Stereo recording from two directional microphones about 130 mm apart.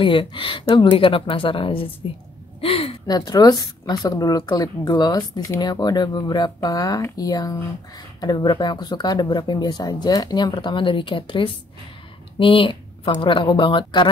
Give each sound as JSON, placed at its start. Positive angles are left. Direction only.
{"t": 0.0, "sound": "speech", "side_deg": 40}
{"t": 2.6, "sound": "gasp", "side_deg": 45}
{"t": 3.1, "sound": "speech", "side_deg": 30}